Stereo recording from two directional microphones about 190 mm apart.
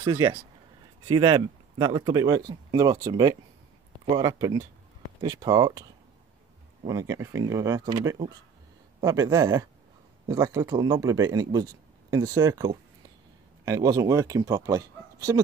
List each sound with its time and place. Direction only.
0.0 s speech: 20° right (ahead or behind)
6.9 s speech: 15° right (ahead or behind)